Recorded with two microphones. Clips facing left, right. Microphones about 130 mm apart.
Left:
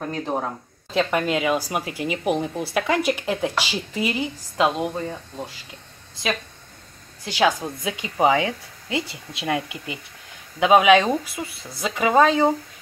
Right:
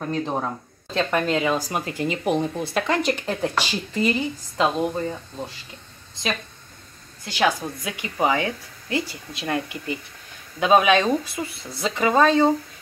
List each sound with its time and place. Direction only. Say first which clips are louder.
0.0 s speech: right 1 dB; 5° left (ahead or behind)
7.2 s a woman's voice: left 2 dB; 15° left (ahead or behind)